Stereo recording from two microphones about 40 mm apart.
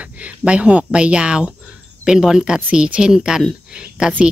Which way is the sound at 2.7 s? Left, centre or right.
Right.